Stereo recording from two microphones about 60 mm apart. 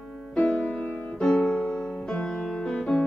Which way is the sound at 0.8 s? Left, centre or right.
Left.